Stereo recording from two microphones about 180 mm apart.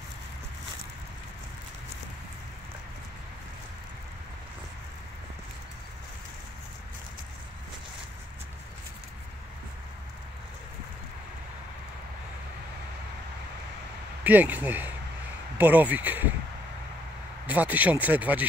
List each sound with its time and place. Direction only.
14.2 s speech: 10° right (ahead or behind)
17.5 s speech: 10° right (ahead or behind)